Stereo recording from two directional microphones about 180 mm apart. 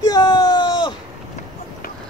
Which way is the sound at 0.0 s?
20° left (ahead or behind).